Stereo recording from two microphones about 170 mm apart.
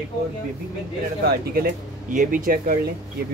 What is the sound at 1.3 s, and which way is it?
Speech, 60° right (ahead or behind).